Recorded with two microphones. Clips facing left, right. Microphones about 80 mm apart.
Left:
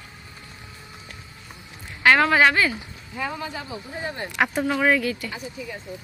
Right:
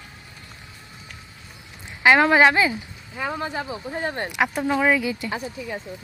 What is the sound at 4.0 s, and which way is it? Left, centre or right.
Speech, right.